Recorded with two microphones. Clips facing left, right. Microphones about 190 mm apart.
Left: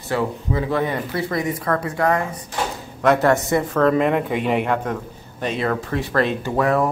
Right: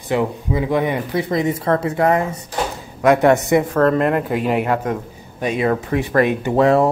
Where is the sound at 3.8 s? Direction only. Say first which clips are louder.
Right 1 dB; centre (ahead or behind); by 6.6 s 15° right (ahead or behind).